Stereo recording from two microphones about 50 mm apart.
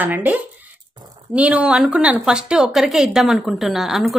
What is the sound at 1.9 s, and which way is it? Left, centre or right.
Speech, right.